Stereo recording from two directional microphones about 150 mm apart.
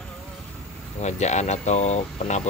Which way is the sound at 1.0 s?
50° left (ahead or behind).